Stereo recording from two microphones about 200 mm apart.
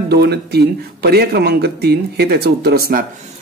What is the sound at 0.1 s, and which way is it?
Speech, 55° right (ahead or behind).